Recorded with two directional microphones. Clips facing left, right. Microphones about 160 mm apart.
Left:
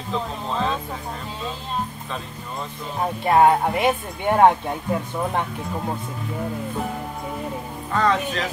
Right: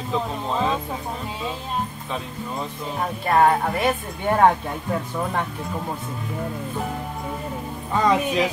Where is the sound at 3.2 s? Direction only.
20° left (ahead or behind).